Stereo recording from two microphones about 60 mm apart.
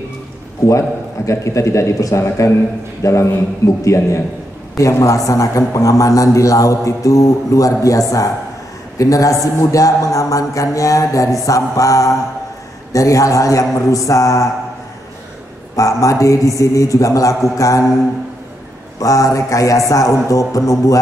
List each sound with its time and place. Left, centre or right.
0.7 s a man's voice: left
8.9 s a man's voice: left
15.7 s a man's voice: left
18.9 s a man's voice: left